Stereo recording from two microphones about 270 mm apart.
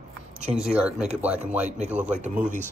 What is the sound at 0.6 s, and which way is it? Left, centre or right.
Speech, centre.